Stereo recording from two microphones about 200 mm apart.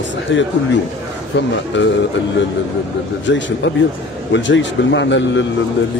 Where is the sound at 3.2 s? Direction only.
65° left (ahead or behind).